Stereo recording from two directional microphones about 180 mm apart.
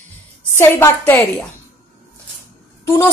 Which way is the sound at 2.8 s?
10° left (ahead or behind).